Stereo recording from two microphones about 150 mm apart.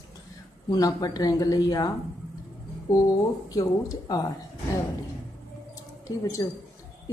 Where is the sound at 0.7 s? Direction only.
25° left (ahead or behind).